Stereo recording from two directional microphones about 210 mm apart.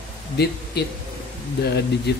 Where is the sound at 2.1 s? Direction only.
50° left (ahead or behind).